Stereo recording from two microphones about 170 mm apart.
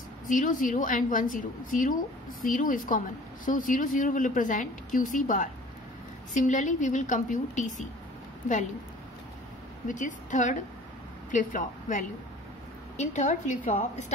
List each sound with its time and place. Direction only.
0.3 s speech: 50° left (ahead or behind)
9.8 s speech: 50° left (ahead or behind)